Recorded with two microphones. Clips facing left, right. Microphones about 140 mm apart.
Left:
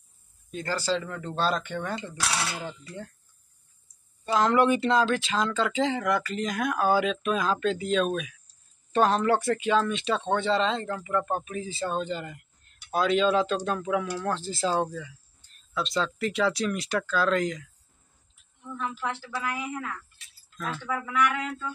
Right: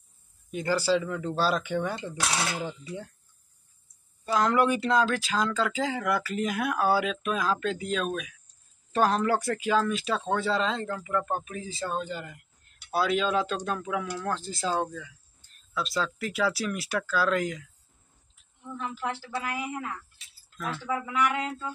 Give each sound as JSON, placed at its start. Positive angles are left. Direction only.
{"t": 0.5, "sound": "speech", "side_deg": -15}
{"t": 4.3, "sound": "speech", "side_deg": 0}
{"t": 18.8, "sound": "speech", "side_deg": -30}
{"t": 20.5, "sound": "speech", "side_deg": -5}
{"t": 20.8, "sound": "speech", "side_deg": -20}